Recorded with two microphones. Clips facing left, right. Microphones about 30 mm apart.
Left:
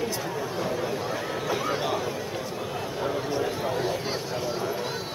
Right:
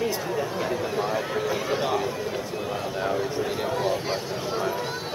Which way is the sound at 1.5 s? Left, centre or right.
Centre.